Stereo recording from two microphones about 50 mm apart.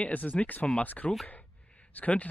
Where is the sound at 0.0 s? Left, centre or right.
Left.